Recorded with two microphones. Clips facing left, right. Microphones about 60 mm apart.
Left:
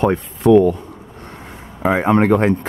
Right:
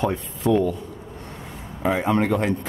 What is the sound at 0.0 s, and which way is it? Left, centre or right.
Speech, left.